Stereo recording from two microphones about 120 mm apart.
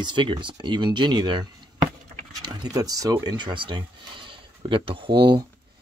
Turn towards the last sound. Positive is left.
turn(degrees=-40)  # may be behind; listen again after turning